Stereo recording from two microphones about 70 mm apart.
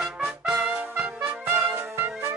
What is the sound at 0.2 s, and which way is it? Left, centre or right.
Trumpet, right.